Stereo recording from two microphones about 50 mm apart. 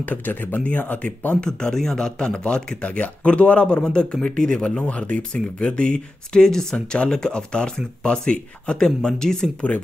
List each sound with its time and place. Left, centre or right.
0.0 s a man's voice: left; by 9.5 s centre